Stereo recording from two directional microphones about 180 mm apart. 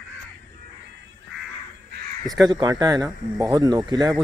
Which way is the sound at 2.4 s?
20° right (ahead or behind).